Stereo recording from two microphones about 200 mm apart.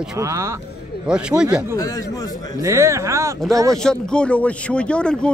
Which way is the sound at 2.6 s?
15° right (ahead or behind).